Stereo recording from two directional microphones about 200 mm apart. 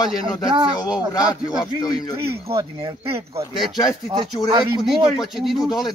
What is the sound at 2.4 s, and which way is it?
Speech, 25° right (ahead or behind).